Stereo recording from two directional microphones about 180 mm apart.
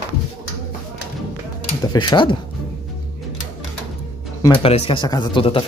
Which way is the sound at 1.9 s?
25° left (ahead or behind).